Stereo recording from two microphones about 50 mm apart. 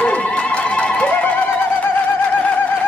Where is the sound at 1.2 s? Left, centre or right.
Left.